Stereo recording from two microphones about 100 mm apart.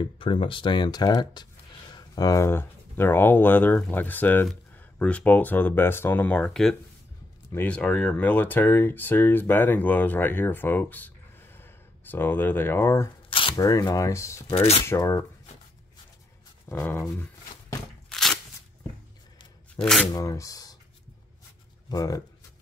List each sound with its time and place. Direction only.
0.0 s speech: 60° left (ahead or behind); by 13.1 s 25° left (ahead or behind)
13.3 s shuffling cards: 60° left (ahead or behind)
13.6 s speech: 35° left (ahead or behind)
16.7 s a sound: 30° left (ahead or behind)
18.1 s a sound: 5° left (ahead or behind)
19.8 s speech: 5° left (ahead or behind)
20.1 s speech: 35° left (ahead or behind)
21.9 s speech: 40° left (ahead or behind)